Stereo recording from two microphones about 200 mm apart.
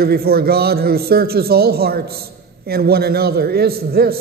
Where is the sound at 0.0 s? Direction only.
50° right (ahead or behind).